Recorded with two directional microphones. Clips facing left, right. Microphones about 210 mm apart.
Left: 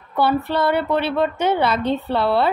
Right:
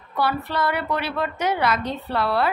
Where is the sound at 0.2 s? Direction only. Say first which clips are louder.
Left 5 dB; 30° left (ahead or behind).